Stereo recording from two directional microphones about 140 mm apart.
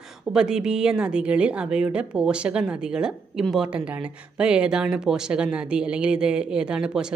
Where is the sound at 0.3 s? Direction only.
5° right (ahead or behind).